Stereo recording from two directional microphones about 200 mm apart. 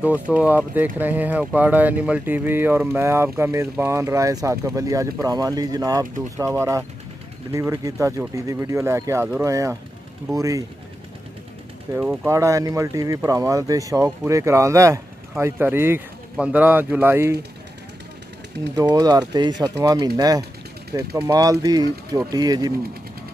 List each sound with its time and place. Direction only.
0.0 s speech: 5° right (ahead or behind)
12.0 s speech: 5° right (ahead or behind)
18.8 s speech: 20° right (ahead or behind)